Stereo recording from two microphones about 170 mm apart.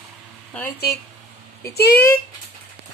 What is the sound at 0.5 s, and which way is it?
Speech, 5° left (ahead or behind).